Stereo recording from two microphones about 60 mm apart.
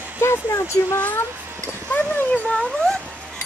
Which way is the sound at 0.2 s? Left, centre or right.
Left.